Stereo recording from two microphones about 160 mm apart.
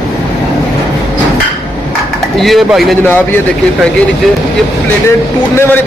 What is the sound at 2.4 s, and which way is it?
Speech, centre (ahead or behind).